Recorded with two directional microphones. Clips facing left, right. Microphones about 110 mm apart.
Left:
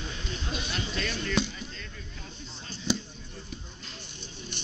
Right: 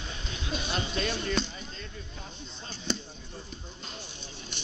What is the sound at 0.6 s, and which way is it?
Speech, 25° right (ahead or behind).